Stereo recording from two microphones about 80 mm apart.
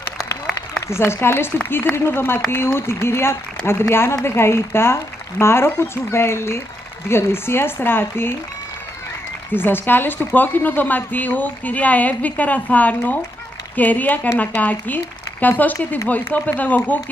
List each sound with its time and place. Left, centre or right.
0.8 s speech: left
9.5 s speech: left